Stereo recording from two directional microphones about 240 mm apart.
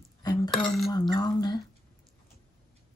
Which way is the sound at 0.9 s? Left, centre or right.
Centre.